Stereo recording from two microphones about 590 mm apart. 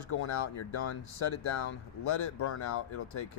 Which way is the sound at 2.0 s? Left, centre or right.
Left.